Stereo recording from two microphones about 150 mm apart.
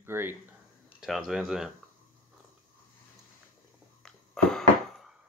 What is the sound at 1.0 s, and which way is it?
Speech, centre (ahead or behind).